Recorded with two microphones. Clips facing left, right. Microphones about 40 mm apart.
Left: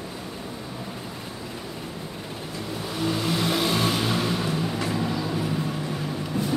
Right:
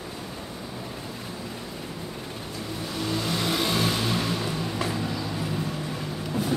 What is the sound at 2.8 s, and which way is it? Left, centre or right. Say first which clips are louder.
Vehicle: left 3 dB; centre.